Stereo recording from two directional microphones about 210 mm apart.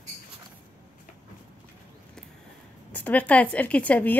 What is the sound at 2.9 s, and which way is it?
A woman's voice, 10° left (ahead or behind).